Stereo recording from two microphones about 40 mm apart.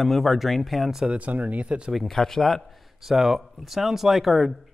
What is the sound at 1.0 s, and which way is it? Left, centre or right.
Speech, right.